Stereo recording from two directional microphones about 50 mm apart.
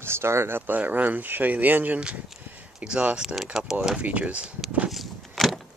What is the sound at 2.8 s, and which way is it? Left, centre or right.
Speech, right.